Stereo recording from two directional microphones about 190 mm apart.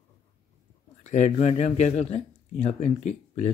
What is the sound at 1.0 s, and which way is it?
Speech, 35° left (ahead or behind).